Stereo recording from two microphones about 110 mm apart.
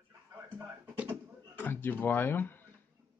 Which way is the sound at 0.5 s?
15° right (ahead or behind).